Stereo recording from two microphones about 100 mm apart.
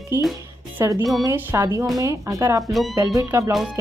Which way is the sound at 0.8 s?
25° right (ahead or behind).